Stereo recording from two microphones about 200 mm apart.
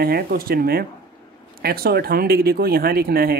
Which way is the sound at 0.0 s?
50° right (ahead or behind).